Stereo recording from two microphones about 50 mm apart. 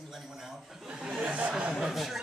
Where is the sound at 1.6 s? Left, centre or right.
Centre.